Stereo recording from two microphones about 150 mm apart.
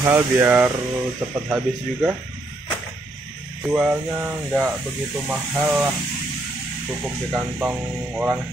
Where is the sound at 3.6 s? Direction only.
5° right (ahead or behind).